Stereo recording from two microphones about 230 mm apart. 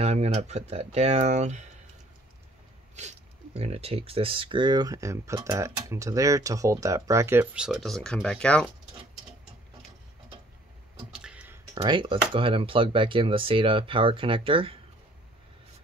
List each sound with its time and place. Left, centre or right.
0.0 s speech: right
3.0 s speech: right; by 8.7 s centre
11.1 s beatboxing: centre
11.7 s speech: centre